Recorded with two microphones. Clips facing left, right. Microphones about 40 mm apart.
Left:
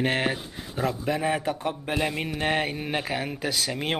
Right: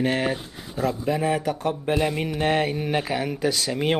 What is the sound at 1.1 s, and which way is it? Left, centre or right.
Speech, centre.